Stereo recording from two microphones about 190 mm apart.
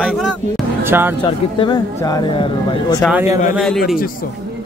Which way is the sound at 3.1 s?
15° right (ahead or behind).